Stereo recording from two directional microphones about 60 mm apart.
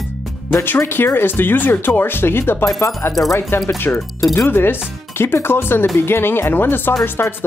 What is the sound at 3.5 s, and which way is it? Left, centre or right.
Speech, left.